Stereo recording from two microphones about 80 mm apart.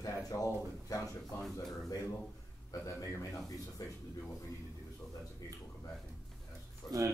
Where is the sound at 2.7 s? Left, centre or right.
Left.